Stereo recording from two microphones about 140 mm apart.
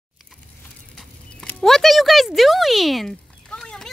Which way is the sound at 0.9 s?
5° left (ahead or behind).